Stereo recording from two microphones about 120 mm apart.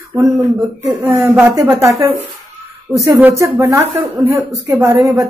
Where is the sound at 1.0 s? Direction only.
15° right (ahead or behind).